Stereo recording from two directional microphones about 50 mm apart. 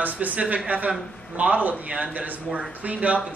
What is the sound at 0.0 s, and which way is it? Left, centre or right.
A man's voice, right.